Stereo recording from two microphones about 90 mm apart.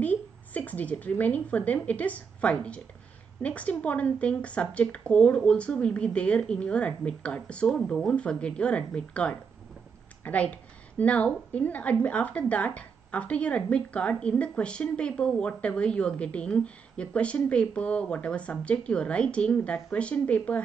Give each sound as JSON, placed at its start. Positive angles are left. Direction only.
{"t": 0.0, "sound": "a woman's voice", "side_deg": 15}